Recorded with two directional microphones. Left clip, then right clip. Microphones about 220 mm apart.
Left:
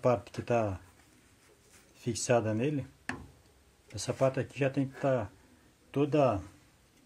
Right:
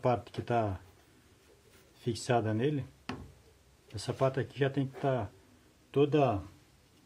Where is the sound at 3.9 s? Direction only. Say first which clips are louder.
Left 2 dB; 10° left (ahead or behind).